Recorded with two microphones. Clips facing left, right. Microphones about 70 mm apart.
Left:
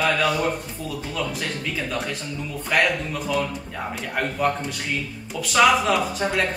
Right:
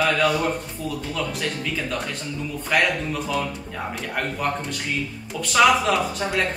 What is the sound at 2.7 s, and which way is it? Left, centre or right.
Speech, centre.